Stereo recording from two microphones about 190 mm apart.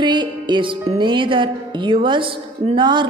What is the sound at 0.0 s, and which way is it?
Speech, 25° right (ahead or behind).